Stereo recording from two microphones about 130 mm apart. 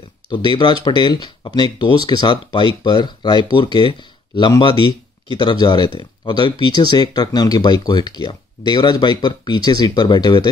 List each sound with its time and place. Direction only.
0.3 s speech: 35° left (ahead or behind)
4.7 s speech: 40° right (ahead or behind)
5.4 s speech: 35° left (ahead or behind)